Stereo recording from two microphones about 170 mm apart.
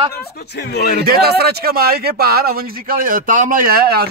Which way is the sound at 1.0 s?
65° right (ahead or behind).